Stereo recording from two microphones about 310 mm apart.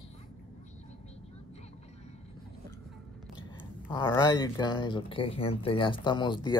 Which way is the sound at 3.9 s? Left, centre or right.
Centre.